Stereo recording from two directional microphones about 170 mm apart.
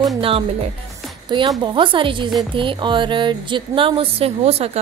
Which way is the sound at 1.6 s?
30° right (ahead or behind).